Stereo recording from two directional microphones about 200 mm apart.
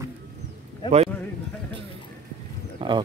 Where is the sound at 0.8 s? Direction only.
30° right (ahead or behind).